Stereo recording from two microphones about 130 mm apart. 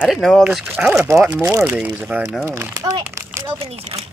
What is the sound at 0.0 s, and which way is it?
Speech, centre (ahead or behind).